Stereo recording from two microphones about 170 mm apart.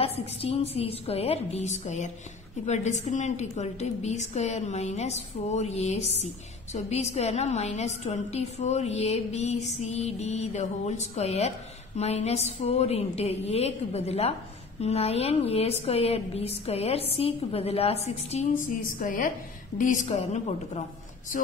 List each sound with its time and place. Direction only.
0.0 s a woman's voice: 35° left (ahead or behind)
18.9 s a woman's voice: 50° left (ahead or behind)